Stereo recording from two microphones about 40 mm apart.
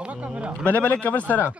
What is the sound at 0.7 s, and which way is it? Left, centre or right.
Speech, left.